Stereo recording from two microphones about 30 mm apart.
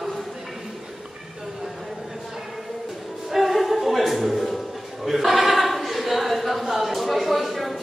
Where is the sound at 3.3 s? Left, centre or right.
Centre.